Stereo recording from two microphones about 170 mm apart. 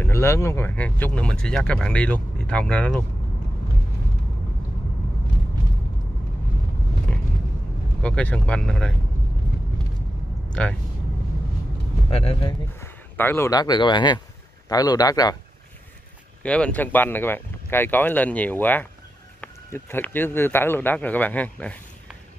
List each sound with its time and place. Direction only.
0.0 s speech: 15° left (ahead or behind)
8.0 s speech: 5° left (ahead or behind)
10.5 s speech: 5° left (ahead or behind)
12.1 s speech: 35° left (ahead or behind)
12.8 s a man's voice: 15° left (ahead or behind)
16.4 s speech: 5° left (ahead or behind)